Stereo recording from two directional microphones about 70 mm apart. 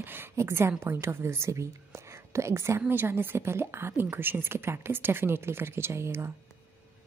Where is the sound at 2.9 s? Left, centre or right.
Right.